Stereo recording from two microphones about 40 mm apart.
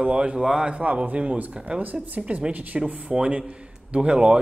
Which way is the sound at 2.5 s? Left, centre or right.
Right.